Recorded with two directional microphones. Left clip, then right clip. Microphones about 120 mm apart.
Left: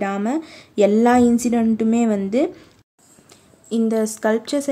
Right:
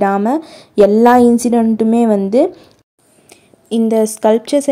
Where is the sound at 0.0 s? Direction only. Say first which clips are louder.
Right 9 dB; 40° right (ahead or behind).